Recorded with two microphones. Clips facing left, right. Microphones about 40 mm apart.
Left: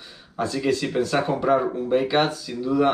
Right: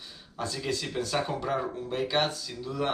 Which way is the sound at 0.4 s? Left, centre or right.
Centre.